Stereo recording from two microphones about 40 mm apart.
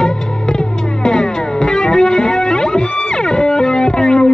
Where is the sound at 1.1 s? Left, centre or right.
Centre.